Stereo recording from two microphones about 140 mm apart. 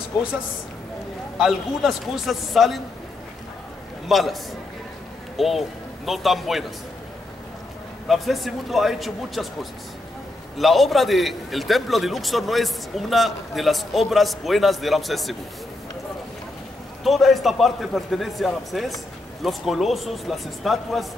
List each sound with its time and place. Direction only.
1.4 s a man's voice: centre (ahead or behind)
4.1 s a man's voice: centre (ahead or behind)
5.4 s a man's voice: centre (ahead or behind)
8.1 s a man's voice: centre (ahead or behind)
17.0 s a man's voice: centre (ahead or behind)